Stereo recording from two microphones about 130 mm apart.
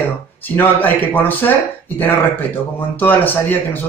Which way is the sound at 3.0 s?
15° left (ahead or behind).